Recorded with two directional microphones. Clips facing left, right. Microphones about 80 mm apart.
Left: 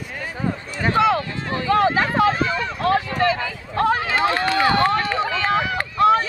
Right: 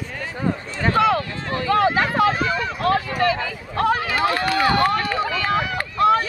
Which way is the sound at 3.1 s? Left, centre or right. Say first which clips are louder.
Even; left.